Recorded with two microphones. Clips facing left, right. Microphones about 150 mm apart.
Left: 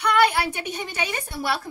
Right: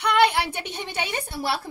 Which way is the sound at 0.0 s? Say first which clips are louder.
Even; 25° right (ahead or behind).